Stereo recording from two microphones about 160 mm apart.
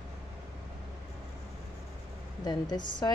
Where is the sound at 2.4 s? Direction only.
25° left (ahead or behind).